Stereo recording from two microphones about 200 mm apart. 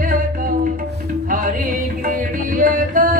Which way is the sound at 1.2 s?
45° right (ahead or behind).